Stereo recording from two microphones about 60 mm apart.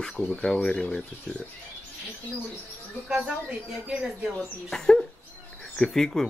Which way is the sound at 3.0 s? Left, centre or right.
Centre.